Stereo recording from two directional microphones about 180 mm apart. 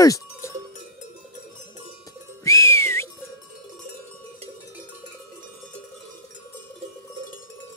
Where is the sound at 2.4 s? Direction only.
15° left (ahead or behind).